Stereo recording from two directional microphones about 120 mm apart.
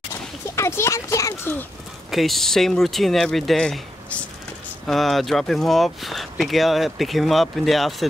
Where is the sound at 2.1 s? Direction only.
Centre (ahead or behind).